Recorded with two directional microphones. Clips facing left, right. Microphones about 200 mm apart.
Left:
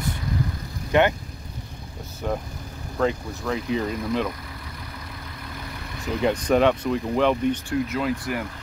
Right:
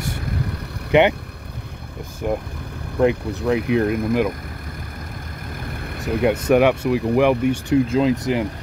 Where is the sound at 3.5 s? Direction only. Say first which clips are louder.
Right 6 dB; 65° right (ahead or behind).